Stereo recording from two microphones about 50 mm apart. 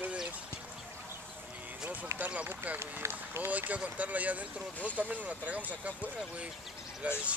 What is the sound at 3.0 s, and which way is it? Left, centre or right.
Speech, right.